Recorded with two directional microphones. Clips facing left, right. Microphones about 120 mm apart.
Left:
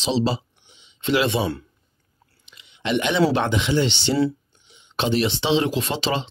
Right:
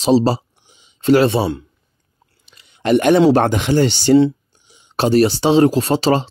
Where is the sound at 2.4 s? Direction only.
40° right (ahead or behind).